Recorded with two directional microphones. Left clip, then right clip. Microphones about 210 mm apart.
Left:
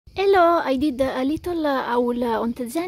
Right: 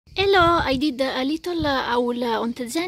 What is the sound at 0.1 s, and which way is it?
A child's voice, 5° left (ahead or behind).